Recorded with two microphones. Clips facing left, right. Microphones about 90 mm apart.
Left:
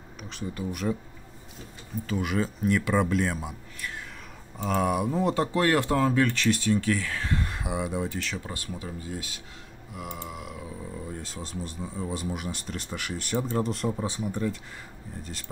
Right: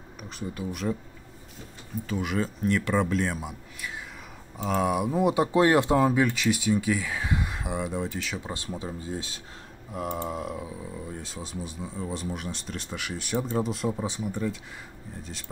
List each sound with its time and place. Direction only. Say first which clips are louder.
0.2 s speech: even; 5° right (ahead or behind)
2.0 s speech: left 1 dB; centre (ahead or behind)
8.4 s speech: right 2 dB; 25° right (ahead or behind)
9.9 s a sound: right 7 dB; 40° right (ahead or behind)
10.8 s speech: even; centre (ahead or behind)